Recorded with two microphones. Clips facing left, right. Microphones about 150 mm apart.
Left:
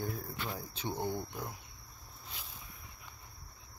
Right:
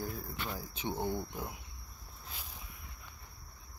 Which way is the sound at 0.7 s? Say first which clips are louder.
Right 1 dB; 15° right (ahead or behind).